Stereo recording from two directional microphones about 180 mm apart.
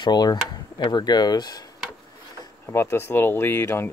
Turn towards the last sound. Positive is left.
turn(degrees=15)  # may be behind; listen again after turning